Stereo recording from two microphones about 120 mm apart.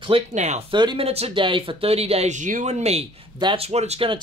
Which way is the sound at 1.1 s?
55° right (ahead or behind).